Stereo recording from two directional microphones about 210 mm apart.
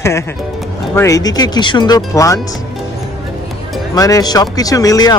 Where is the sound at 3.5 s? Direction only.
Centre (ahead or behind).